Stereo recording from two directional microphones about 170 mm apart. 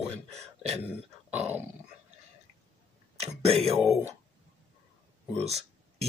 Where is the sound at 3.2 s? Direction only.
35° right (ahead or behind).